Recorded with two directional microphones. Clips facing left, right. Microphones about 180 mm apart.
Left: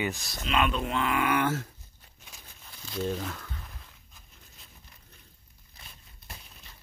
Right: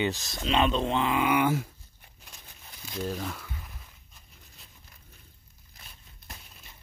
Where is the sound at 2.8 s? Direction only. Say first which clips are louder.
Left 2 dB; 10° right (ahead or behind).